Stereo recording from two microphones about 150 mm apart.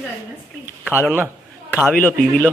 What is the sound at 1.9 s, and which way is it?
Speech, 10° left (ahead or behind).